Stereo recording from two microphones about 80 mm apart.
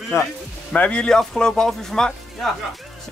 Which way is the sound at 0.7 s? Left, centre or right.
Centre.